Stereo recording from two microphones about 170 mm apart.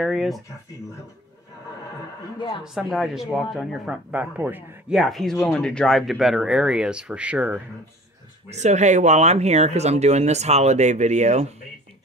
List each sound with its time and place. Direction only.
0.0 s speech: centre (ahead or behind)
2.6 s speech: centre (ahead or behind)
8.5 s speech: 40° right (ahead or behind)